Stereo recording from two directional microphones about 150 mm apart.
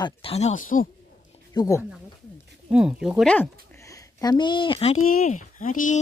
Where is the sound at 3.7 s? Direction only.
20° left (ahead or behind); by 5.9 s 60° left (ahead or behind).